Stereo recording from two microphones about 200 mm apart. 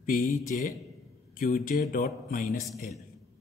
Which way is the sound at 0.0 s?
45° left (ahead or behind).